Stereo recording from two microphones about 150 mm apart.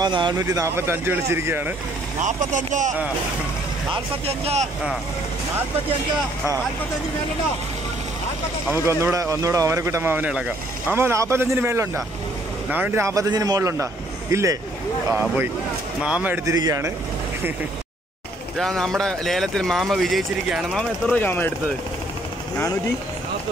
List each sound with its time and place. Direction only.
0.0 s speech: 30° right (ahead or behind); by 1.7 s 15° right (ahead or behind)
2.2 s speech: 55° right (ahead or behind)
3.9 s speech: 40° right (ahead or behind)
8.6 s speech: 15° right (ahead or behind)
16.4 s speech: 25° right (ahead or behind)
18.6 s speech: centre (ahead or behind)
21.1 s speech: 10° left (ahead or behind)